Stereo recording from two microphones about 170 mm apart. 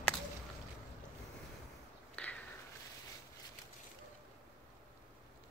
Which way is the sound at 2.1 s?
10° left (ahead or behind).